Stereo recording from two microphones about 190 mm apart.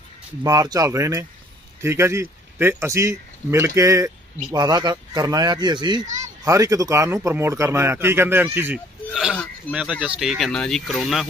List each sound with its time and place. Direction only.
0.4 s a man's voice: 20° right (ahead or behind); by 11.2 s centre (ahead or behind)